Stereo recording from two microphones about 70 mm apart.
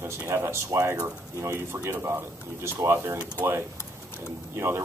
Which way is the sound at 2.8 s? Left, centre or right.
Right.